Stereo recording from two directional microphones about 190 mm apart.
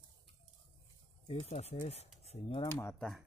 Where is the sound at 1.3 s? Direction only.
35° left (ahead or behind).